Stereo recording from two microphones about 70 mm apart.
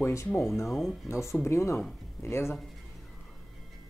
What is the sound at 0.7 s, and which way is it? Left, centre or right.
Speech, centre.